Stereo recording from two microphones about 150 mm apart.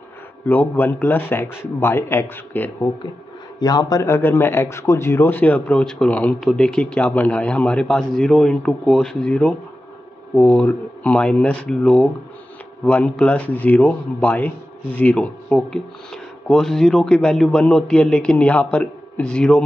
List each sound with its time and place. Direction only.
0.5 s speech: 10° left (ahead or behind)
3.5 s speech: 25° left (ahead or behind); by 19.6 s 5° left (ahead or behind)